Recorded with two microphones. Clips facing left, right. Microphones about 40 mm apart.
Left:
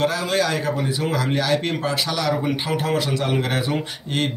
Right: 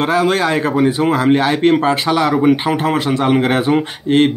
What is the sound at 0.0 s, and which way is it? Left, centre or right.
Speech, right.